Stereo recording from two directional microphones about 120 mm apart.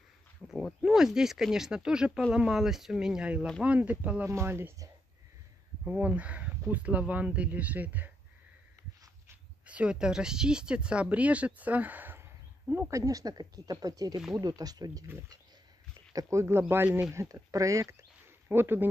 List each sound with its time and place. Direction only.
0.5 s speech: centre (ahead or behind); by 4.8 s 20° right (ahead or behind)
5.9 s speech: 10° right (ahead or behind)
9.7 s speech: 10° right (ahead or behind)
12.9 s speech: 30° right (ahead or behind)